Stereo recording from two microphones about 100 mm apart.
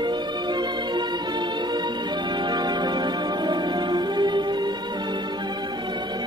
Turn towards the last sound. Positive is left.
turn(degrees=-45)  # may be behind; listen again after turning